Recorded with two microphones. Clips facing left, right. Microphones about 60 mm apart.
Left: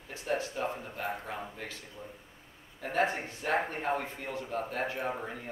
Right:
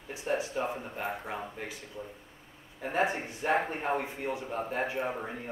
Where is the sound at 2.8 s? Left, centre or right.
Centre.